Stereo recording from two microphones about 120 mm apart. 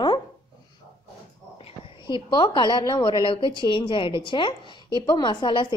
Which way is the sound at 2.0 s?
40° left (ahead or behind).